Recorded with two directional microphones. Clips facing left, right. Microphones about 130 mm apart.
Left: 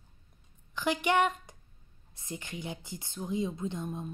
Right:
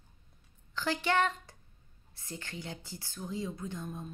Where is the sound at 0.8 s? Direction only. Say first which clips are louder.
Left 3 dB; 15° left (ahead or behind).